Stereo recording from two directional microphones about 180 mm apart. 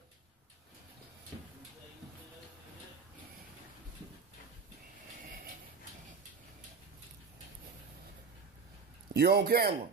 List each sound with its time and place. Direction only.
9.1 s a man's voice: 60° right (ahead or behind)